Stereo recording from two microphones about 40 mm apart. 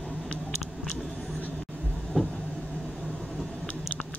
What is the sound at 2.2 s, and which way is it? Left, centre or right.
Vehicle, centre.